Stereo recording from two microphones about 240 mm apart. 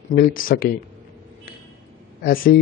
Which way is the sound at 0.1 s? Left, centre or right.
Left.